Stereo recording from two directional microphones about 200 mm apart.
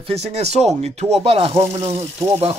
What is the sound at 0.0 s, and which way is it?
A man's voice, 30° right (ahead or behind).